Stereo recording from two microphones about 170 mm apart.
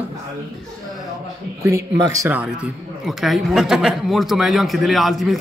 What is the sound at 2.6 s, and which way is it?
A man's voice, centre (ahead or behind).